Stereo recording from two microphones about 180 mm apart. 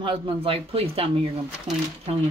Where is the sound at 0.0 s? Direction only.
30° right (ahead or behind).